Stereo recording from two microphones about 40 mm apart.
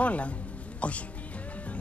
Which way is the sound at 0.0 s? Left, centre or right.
Left.